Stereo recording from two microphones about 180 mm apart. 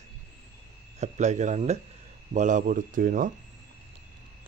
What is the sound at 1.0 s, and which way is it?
A man's voice, 40° right (ahead or behind).